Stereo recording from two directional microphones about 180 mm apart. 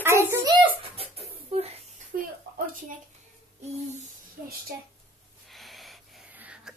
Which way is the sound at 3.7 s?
40° right (ahead or behind).